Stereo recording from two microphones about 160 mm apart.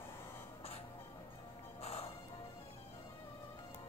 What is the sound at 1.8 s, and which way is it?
Music, 40° left (ahead or behind).